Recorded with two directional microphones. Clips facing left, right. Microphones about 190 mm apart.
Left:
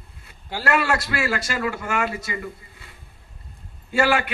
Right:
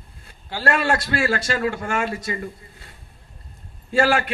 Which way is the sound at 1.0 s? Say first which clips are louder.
Right 3 dB; 35° right (ahead or behind).